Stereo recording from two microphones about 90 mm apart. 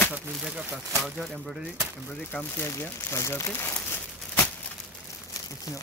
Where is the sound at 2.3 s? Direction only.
25° left (ahead or behind).